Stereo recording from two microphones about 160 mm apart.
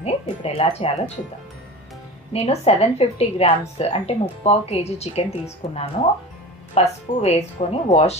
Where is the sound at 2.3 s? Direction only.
40° left (ahead or behind).